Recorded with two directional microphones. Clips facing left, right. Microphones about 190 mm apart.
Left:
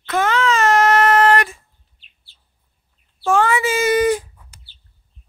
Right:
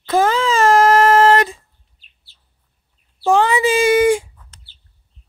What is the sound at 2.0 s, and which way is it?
Bird, 40° right (ahead or behind).